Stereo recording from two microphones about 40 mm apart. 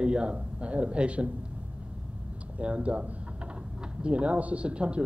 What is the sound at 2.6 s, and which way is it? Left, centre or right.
Speech, right.